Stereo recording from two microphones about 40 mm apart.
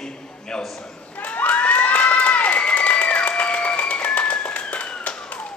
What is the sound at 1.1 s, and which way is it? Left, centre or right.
Crowd, left.